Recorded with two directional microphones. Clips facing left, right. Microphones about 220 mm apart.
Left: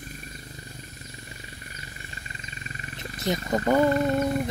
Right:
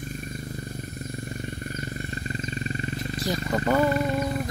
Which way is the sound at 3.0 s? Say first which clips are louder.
Left 3 dB; 20° left (ahead or behind).